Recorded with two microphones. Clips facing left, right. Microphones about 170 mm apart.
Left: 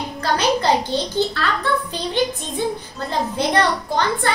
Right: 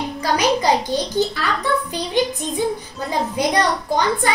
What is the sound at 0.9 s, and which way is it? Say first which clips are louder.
Speech: right 1 dB; 15° right (ahead or behind).